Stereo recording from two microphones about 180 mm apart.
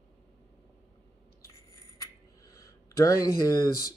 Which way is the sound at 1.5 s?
15° left (ahead or behind).